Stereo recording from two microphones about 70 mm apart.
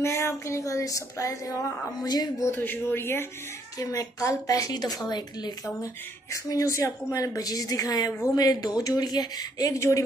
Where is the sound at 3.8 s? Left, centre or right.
Left.